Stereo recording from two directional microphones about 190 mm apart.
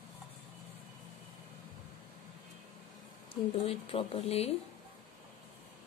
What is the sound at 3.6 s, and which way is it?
Speech, 30° left (ahead or behind).